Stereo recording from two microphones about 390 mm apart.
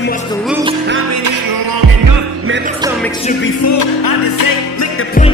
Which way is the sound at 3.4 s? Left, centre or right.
Left.